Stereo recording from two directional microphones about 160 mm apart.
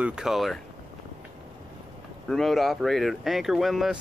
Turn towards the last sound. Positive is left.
turn(degrees=0)  # may be behind; listen again after turning